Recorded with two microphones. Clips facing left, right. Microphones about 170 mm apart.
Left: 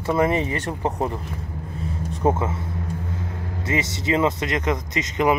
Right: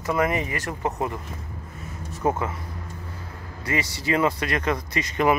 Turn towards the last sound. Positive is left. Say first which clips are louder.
# left 1 dB
turn(degrees=20)  # may be behind; listen again after turning